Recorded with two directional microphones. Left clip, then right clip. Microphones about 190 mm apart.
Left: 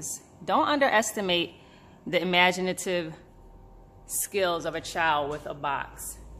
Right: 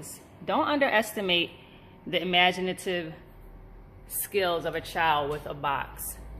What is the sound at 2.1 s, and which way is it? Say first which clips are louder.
A woman's voice: left 1 dB; 30° left (ahead or behind).